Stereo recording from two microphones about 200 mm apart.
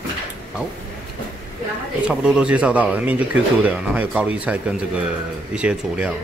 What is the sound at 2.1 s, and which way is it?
Speech, 5° right (ahead or behind).